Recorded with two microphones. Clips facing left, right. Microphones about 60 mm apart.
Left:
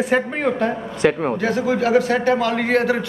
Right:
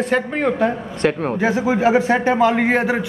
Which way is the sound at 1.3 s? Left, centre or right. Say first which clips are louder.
Right 2 dB; centre.